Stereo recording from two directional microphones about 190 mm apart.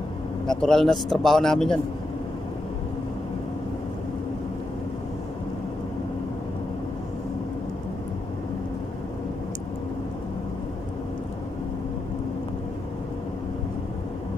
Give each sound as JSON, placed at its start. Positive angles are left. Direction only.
{"t": 0.5, "sound": "speech", "side_deg": 5}